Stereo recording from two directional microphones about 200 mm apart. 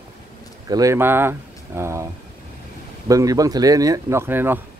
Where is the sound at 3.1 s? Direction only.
15° right (ahead or behind).